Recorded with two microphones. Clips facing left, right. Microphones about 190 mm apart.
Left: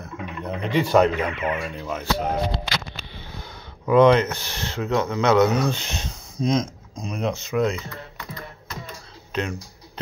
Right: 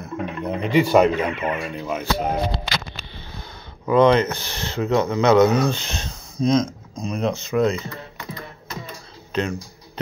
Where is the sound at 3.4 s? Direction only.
10° left (ahead or behind).